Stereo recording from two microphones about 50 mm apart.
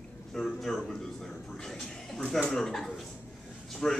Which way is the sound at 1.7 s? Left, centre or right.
Centre.